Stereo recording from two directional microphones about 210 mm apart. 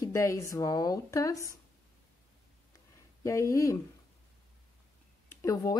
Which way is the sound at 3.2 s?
15° left (ahead or behind).